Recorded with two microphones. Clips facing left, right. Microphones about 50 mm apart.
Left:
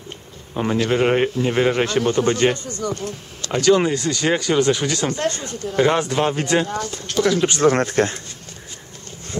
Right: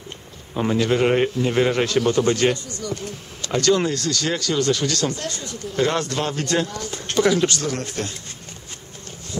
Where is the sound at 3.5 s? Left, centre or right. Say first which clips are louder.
Left 3 dB; centre.